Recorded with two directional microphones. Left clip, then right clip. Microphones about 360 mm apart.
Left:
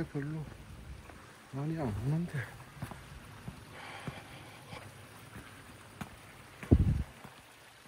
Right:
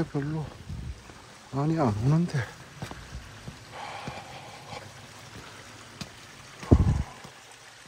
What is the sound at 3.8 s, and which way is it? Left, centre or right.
Raindrop, centre.